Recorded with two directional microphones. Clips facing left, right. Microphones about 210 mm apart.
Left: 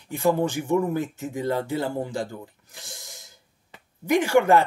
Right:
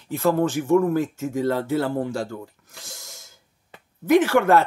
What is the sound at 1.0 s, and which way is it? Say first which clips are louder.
Speech: right 5 dB; centre (ahead or behind).